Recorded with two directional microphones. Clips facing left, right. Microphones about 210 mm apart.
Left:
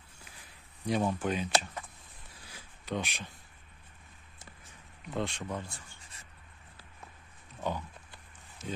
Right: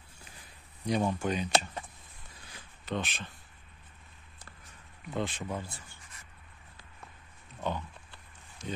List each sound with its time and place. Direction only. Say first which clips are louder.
0.8 s speech: even; centre (ahead or behind)
2.4 s a sound: even; 10° left (ahead or behind)
5.1 s speech: right 1 dB; centre (ahead or behind)
7.6 s pig: even; 10° left (ahead or behind)